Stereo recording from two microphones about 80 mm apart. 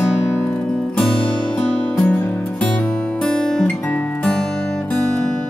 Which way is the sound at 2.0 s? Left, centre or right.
Centre.